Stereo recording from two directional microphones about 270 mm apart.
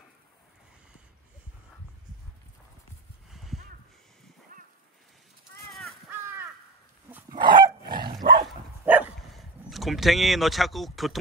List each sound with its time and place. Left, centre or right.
3.3 s clip-clop: centre
4.5 s a sound: right
5.7 s crow: centre
7.1 s dog: centre
7.9 s dog: right
9.3 s speech: centre